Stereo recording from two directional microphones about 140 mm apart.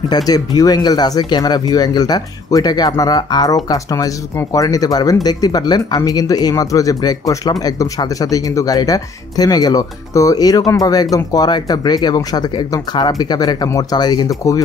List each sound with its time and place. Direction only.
0.1 s speech: 30° left (ahead or behind)